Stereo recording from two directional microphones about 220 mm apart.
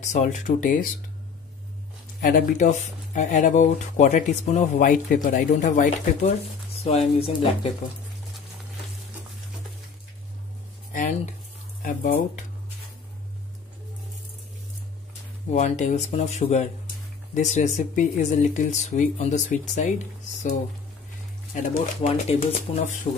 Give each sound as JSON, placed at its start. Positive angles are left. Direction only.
{"t": 0.0, "sound": "speech", "side_deg": 35}
{"t": 2.2, "sound": "speech", "side_deg": 35}
{"t": 10.9, "sound": "speech", "side_deg": 35}
{"t": 15.5, "sound": "speech", "side_deg": 30}
{"t": 21.5, "sound": "speech", "side_deg": 35}